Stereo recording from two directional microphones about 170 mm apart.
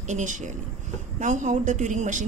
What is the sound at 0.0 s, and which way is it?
A woman's voice, 45° right (ahead or behind).